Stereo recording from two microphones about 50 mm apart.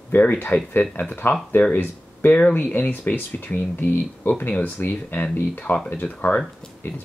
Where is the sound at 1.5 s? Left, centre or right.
Left.